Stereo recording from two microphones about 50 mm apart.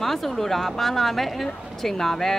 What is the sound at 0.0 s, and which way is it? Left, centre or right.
Speech, centre.